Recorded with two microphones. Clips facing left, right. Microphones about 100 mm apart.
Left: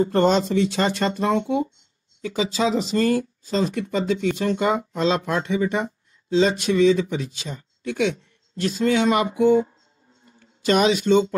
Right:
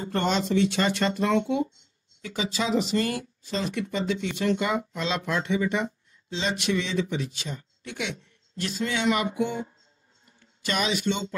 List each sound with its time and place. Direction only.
0.1 s speech: 40° left (ahead or behind)